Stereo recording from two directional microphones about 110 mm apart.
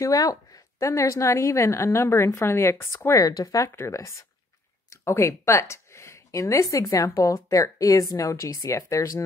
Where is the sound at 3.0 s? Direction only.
35° left (ahead or behind).